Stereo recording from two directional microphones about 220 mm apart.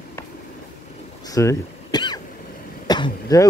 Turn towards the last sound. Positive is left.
turn(degrees=15)  # may be behind; listen again after turning